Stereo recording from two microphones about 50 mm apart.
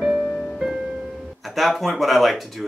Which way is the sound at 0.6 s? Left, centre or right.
Centre.